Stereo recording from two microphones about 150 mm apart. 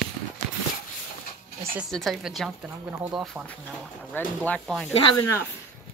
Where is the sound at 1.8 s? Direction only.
Centre (ahead or behind).